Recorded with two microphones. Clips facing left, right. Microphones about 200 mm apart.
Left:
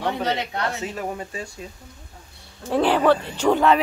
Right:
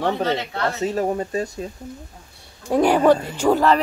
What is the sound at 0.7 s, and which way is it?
Speech, 40° right (ahead or behind).